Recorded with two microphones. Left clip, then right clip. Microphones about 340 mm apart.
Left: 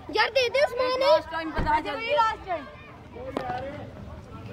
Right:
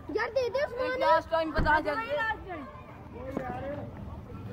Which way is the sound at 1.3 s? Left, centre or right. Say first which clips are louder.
Even; centre.